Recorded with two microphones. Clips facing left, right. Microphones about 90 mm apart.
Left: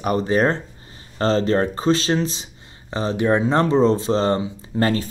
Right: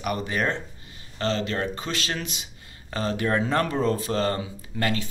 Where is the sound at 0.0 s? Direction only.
30° left (ahead or behind).